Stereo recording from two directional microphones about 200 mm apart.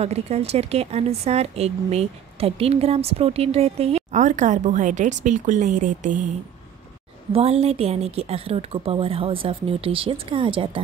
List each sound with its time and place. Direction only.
0.0 s speech: 30° right (ahead or behind)
7.3 s a woman's voice: 30° right (ahead or behind)